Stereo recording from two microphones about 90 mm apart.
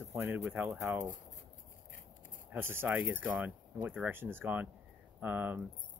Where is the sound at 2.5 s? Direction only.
25° right (ahead or behind).